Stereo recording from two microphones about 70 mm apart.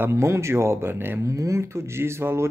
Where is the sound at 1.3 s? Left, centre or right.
Right.